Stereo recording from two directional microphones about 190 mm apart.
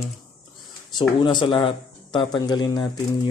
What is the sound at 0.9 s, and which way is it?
Speech, 25° left (ahead or behind).